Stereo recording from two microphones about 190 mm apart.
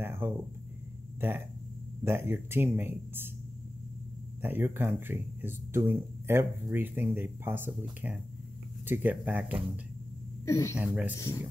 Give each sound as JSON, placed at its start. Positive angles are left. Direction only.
{"t": 0.0, "sound": "a sound", "side_deg": -10}
{"t": 1.2, "sound": "speech", "side_deg": -10}
{"t": 4.4, "sound": "speech", "side_deg": -10}
{"t": 8.8, "sound": "speech", "side_deg": -10}
{"t": 10.4, "sound": "speech", "side_deg": 15}
{"t": 10.8, "sound": "speech", "side_deg": -10}